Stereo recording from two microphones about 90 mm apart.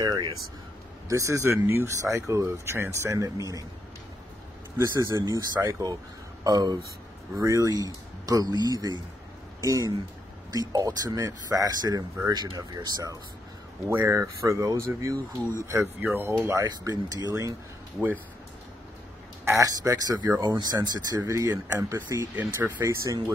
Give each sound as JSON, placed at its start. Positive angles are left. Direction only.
{"t": 0.0, "sound": "speech", "side_deg": -50}
{"t": 1.0, "sound": "speech", "side_deg": -35}
{"t": 4.7, "sound": "speech", "side_deg": -35}
{"t": 13.8, "sound": "speech", "side_deg": -30}
{"t": 16.0, "sound": "speech", "side_deg": -20}
{"t": 16.6, "sound": "speech", "side_deg": -45}
{"t": 19.4, "sound": "speech", "side_deg": -40}
{"t": 20.4, "sound": "speech", "side_deg": -50}
{"t": 21.2, "sound": "speech", "side_deg": -35}
{"t": 22.3, "sound": "speech", "side_deg": -20}
{"t": 22.8, "sound": "speech", "side_deg": -40}